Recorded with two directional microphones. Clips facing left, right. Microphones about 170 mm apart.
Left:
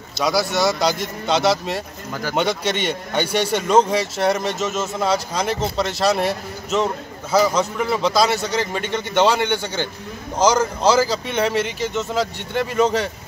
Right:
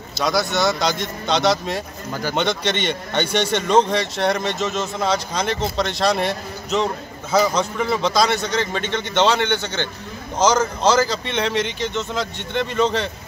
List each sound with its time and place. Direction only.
0.2 s a man's voice: 10° left (ahead or behind)